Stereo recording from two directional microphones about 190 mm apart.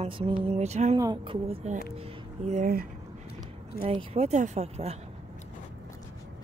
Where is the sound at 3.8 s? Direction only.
30° right (ahead or behind).